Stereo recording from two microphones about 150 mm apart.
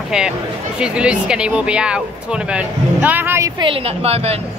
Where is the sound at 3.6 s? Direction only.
40° right (ahead or behind).